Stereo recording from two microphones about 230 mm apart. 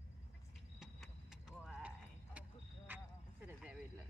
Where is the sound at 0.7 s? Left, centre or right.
Centre.